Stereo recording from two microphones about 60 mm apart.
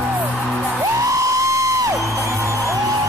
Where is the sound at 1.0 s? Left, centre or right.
Right.